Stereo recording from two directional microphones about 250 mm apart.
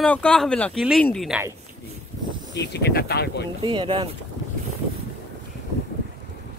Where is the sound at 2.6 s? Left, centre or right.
Left.